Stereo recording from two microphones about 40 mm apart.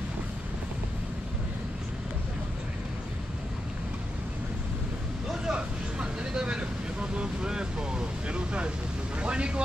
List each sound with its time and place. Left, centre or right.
5.5 s vehicle: right